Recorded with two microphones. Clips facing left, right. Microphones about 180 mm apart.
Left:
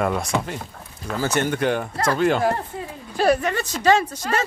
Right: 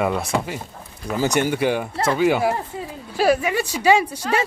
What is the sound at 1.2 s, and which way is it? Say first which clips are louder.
Speech: right 2 dB; 10° right (ahead or behind).